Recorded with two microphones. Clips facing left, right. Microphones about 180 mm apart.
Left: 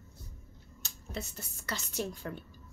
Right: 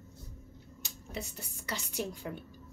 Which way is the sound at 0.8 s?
10° right (ahead or behind).